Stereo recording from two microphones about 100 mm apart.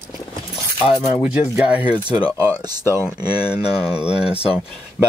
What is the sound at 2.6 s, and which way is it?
Speech, 40° right (ahead or behind).